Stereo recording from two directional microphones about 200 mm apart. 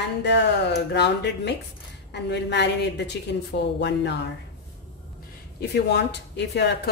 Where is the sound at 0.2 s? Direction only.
60° left (ahead or behind).